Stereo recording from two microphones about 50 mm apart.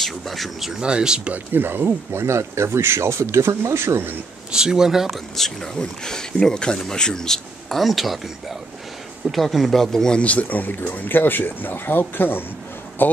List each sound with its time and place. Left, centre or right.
0.0 s speech: centre
0.8 s speech: centre
1.3 s speech: right
4.5 s speech: centre
5.3 s speech: centre
7.8 s speech: centre
9.2 s speech: centre
10.1 s speech: left